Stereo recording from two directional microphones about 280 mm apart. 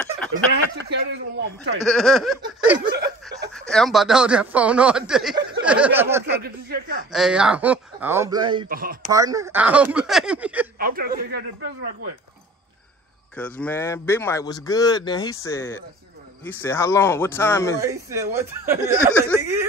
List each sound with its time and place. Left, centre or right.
0.3 s speech: right
1.9 s speech: centre
2.8 s speech: right
3.5 s speech: centre
8.6 s a man's voice: right
9.1 s speech: centre
10.8 s a man's voice: right
13.4 s speech: centre
17.7 s speech: centre